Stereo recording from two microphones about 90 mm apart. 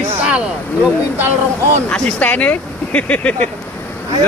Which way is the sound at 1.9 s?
15° left (ahead or behind).